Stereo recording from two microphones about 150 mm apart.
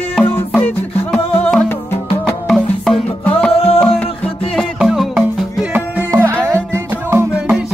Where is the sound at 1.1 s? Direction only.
5° left (ahead or behind).